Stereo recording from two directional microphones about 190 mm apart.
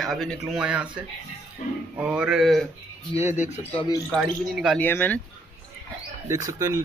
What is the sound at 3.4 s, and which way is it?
Speech, 35° left (ahead or behind).